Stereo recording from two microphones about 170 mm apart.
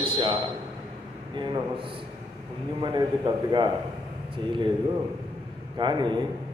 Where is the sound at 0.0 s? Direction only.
30° right (ahead or behind).